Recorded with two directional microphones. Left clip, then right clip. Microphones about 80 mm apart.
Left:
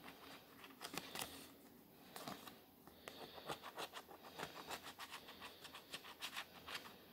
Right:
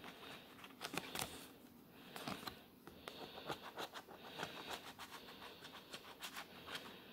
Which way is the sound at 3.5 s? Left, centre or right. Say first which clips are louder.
Right 1 dB; centre.